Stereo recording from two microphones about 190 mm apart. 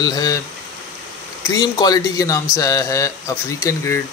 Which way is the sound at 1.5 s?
20° left (ahead or behind).